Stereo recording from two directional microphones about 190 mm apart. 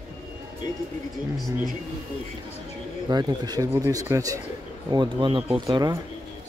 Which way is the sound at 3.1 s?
20° right (ahead or behind).